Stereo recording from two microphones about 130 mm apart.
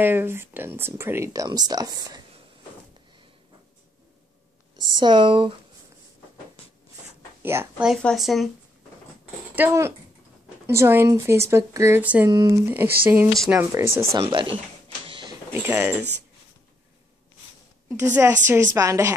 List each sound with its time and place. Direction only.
0.0 s speech: 15° right (ahead or behind)
4.9 s speech: 35° right (ahead or behind)
7.4 s speech: 15° right (ahead or behind)
8.0 s speech: centre (ahead or behind)
9.6 s speech: 20° right (ahead or behind)
12.3 s speech: 30° right (ahead or behind)
14.3 s speech: 40° right (ahead or behind)
15.0 s vehicle: 40° right (ahead or behind)
15.5 s speech: 15° right (ahead or behind)
18.2 s speech: 25° right (ahead or behind)